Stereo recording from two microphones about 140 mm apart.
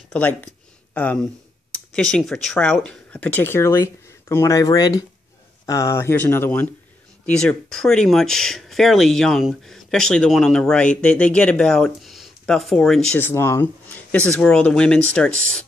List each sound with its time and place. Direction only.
0.1 s speech: 10° left (ahead or behind)
13.2 s speech: 20° left (ahead or behind)